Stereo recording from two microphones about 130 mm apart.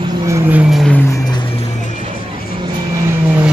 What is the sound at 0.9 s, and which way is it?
Music, 20° left (ahead or behind).